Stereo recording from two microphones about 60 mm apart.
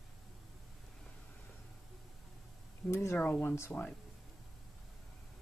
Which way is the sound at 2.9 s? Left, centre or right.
Left.